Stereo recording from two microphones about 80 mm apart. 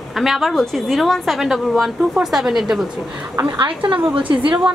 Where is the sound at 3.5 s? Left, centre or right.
Right.